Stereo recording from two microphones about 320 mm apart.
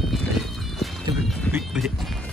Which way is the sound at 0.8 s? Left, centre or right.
Centre.